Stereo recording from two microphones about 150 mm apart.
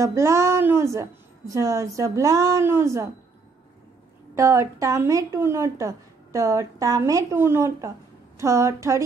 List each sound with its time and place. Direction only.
0.0 s speech: 20° right (ahead or behind)
4.4 s speech: 20° right (ahead or behind)